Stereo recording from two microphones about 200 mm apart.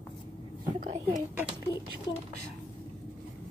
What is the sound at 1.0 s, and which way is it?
Speech, 10° right (ahead or behind).